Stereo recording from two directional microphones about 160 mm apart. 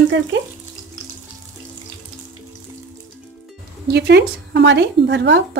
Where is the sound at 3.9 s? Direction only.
90° right.